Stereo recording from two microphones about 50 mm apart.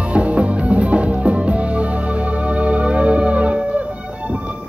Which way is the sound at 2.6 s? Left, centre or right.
Right.